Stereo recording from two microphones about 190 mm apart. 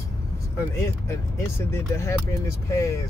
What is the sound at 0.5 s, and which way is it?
Speech, 15° left (ahead or behind).